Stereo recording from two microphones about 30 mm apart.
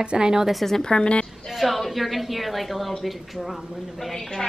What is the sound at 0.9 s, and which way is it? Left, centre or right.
Speech, left.